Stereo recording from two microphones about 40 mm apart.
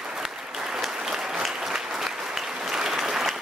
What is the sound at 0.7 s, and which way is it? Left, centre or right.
Applause, centre.